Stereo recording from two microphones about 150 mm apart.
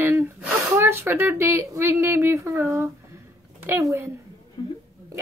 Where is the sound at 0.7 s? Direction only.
15° right (ahead or behind).